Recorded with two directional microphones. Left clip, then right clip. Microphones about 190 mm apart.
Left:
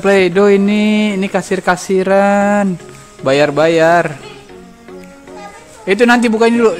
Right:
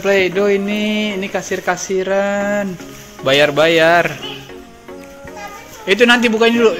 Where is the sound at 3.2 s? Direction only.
45° left (ahead or behind).